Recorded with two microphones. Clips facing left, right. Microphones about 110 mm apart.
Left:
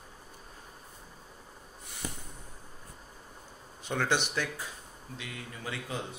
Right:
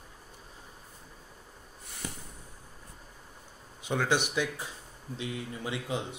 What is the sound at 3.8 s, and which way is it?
Speech, 5° right (ahead or behind).